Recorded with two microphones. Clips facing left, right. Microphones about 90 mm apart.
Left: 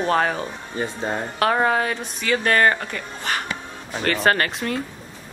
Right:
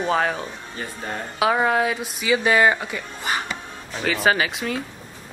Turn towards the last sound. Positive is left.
turn(degrees=0)  # may be behind; listen again after turning